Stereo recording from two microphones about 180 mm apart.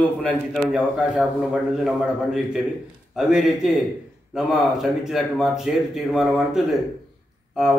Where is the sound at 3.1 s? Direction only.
Centre (ahead or behind).